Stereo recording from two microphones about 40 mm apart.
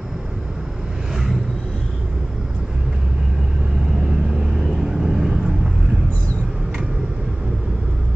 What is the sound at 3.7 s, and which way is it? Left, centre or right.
Vehicle, centre.